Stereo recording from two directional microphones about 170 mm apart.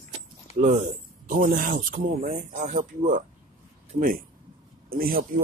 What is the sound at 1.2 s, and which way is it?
Speech, 55° right (ahead or behind).